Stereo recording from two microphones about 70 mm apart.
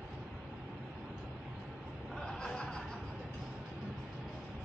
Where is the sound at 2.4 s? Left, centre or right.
Centre.